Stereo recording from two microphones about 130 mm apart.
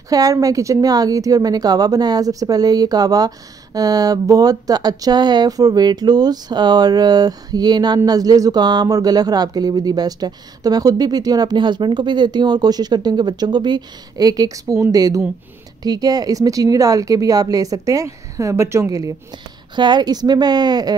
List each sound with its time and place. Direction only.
0.1 s a woman's voice: 25° right (ahead or behind)